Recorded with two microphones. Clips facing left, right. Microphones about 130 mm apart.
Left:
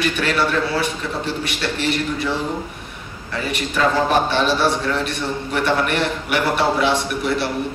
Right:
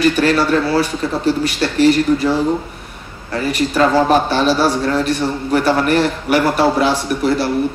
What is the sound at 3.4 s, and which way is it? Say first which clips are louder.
A man's voice: right 5 dB; 40° right (ahead or behind).